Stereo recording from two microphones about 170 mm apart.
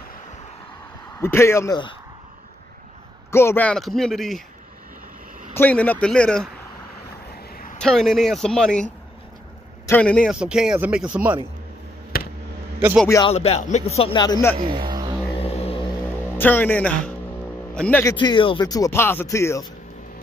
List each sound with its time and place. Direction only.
1.2 s speech: 15° left (ahead or behind)
3.3 s a man's voice: 15° left (ahead or behind)
5.5 s speech: 10° left (ahead or behind)
7.5 s a sound: 50° left (ahead or behind)
7.8 s a man's voice: centre (ahead or behind)
9.8 s speech: 10° left (ahead or behind)
10.4 s a man's voice: 5° right (ahead or behind)
12.1 s a sound: 60° left (ahead or behind)
13.3 s a man's voice: 35° left (ahead or behind)
14.6 s a sound: 25° right (ahead or behind)
15.3 s vehicle: 35° left (ahead or behind)
16.3 s speech: 10° left (ahead or behind)
18.0 s speech: 25° left (ahead or behind)